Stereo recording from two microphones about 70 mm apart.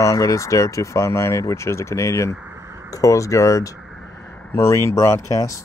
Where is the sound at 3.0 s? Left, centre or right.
Left.